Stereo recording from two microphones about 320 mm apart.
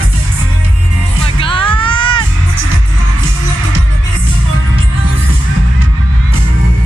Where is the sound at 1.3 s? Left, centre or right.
Centre.